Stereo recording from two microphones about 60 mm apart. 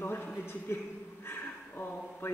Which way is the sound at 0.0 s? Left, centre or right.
Left.